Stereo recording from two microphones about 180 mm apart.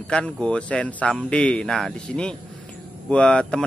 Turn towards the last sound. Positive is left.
turn(degrees=5)  # may be behind; listen again after turning